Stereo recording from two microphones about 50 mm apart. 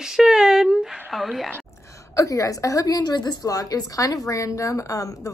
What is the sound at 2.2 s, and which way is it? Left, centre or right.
Speech, left.